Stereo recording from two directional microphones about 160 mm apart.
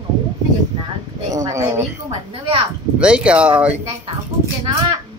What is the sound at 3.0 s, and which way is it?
Speech, 5° right (ahead or behind).